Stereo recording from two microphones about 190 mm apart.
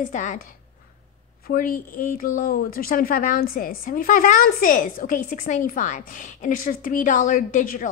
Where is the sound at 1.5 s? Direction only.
45° left (ahead or behind).